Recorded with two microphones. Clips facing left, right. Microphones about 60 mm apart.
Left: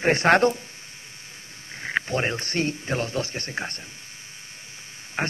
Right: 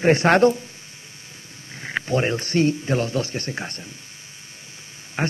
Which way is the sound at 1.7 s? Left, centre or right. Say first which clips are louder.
Right 2 dB; left.